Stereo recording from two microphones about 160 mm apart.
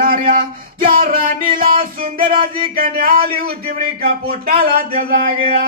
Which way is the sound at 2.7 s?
65° right (ahead or behind).